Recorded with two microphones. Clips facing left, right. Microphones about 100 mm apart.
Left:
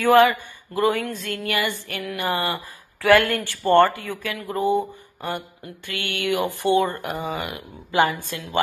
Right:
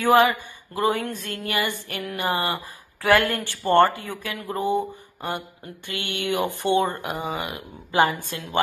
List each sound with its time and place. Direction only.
0.1 s speech: 20° right (ahead or behind)